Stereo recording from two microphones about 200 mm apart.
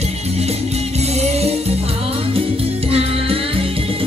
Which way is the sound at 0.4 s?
30° right (ahead or behind).